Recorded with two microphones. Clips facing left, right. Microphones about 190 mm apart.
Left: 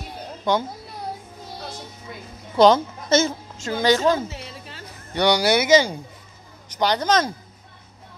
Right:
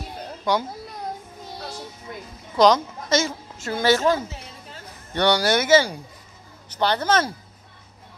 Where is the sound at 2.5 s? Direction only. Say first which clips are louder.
Left 2 dB; 25° left (ahead or behind).